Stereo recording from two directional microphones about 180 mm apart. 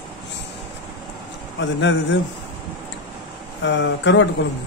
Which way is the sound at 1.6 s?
90° left.